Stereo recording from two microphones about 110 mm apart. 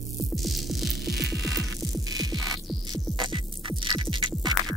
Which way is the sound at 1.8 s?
35° right (ahead or behind).